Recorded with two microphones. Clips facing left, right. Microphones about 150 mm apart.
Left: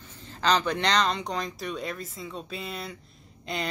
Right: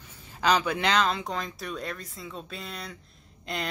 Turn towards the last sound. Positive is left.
turn(degrees=0)  # may be behind; listen again after turning